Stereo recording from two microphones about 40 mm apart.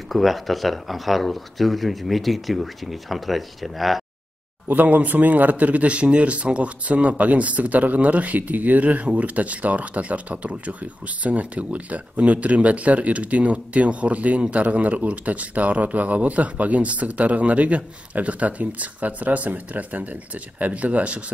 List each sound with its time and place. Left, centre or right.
0.1 s speech: centre
4.6 s speech: right